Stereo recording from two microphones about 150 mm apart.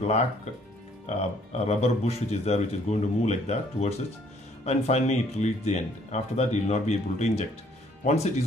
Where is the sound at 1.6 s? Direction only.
45° left (ahead or behind).